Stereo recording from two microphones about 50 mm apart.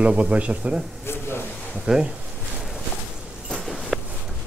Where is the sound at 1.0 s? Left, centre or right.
Left.